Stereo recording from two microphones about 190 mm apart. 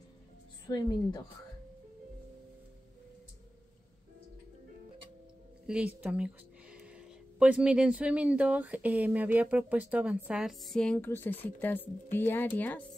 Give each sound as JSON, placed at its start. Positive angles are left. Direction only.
{"t": 0.7, "sound": "a woman's voice", "side_deg": 20}
{"t": 5.7, "sound": "speech", "side_deg": -5}